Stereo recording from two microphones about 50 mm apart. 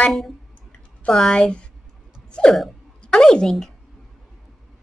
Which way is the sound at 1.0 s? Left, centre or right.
Centre.